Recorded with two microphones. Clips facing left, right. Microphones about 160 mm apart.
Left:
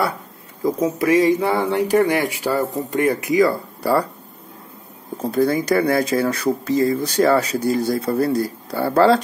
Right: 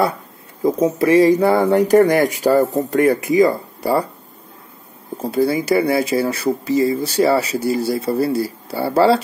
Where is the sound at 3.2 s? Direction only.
20° right (ahead or behind).